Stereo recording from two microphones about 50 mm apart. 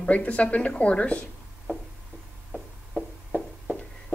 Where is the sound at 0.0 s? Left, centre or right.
Left.